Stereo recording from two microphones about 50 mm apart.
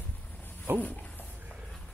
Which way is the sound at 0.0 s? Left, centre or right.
Left.